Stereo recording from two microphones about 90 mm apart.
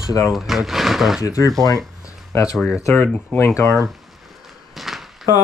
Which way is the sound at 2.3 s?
30° left (ahead or behind).